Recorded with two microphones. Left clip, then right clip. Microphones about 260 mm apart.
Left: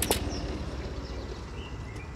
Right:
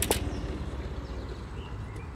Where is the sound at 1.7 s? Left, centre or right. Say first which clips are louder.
Left 1 dB; left.